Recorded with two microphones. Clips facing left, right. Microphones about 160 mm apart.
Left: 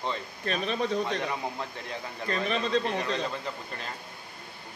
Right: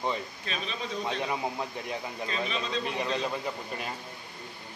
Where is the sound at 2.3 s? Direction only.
60° left (ahead or behind).